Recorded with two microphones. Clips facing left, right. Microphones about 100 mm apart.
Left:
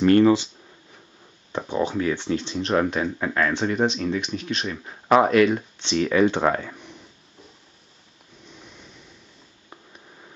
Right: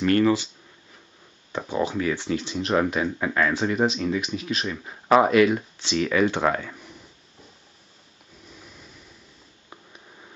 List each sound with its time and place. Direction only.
0.0 s speech: 25° left (ahead or behind)
1.6 s speech: 5° right (ahead or behind)
6.4 s speech: 10° left (ahead or behind)
8.5 s a sound: 5° right (ahead or behind)